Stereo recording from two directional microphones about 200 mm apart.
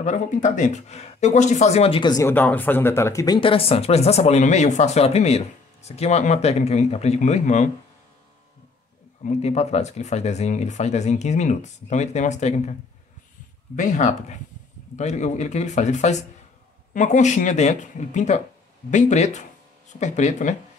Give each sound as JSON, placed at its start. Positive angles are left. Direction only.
{"t": 0.0, "sound": "speech", "side_deg": 35}
{"t": 3.3, "sound": "speech", "side_deg": 25}
{"t": 9.2, "sound": "speech", "side_deg": 35}
{"t": 13.7, "sound": "speech", "side_deg": 40}